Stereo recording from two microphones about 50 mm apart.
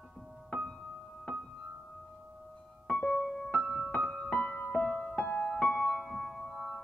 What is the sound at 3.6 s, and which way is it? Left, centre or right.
Music, centre.